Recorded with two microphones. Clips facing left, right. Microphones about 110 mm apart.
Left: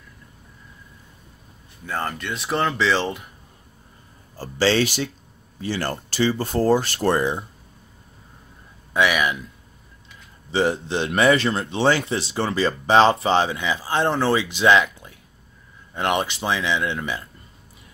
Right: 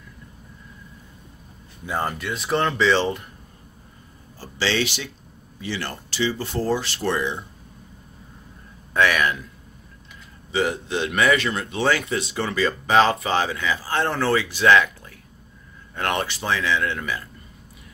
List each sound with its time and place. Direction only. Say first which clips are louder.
1.9 s speech: right 1 dB; 10° right (ahead or behind)
4.4 s speech: left 5 dB; 40° left (ahead or behind)
8.9 s speech: even; 15° left (ahead or behind)
10.5 s speech: left 2 dB; 30° left (ahead or behind)